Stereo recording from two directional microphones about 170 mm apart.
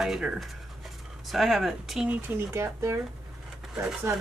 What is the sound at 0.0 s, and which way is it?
Speech, 5° right (ahead or behind).